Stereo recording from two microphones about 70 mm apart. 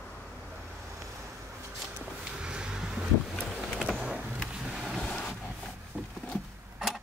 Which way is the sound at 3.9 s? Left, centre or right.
Centre.